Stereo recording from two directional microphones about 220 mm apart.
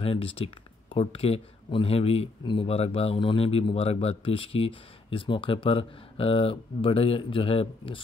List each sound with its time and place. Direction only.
0.0 s speech: 25° left (ahead or behind)